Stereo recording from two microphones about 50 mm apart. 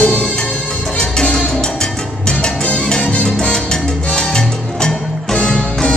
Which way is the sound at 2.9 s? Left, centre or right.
Left.